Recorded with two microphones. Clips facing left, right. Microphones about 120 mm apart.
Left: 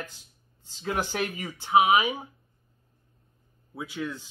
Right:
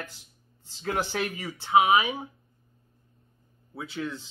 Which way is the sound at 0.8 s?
20° left (ahead or behind).